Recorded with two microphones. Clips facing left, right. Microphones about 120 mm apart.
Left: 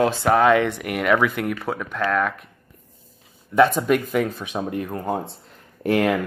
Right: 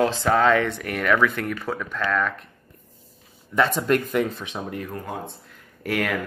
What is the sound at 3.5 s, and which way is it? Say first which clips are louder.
Speech: left 4 dB; 5° left (ahead or behind).